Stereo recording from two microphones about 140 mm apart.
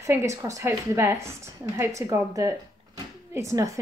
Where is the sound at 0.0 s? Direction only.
20° right (ahead or behind).